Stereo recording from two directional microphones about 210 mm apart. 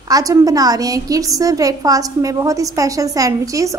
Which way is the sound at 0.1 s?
15° right (ahead or behind).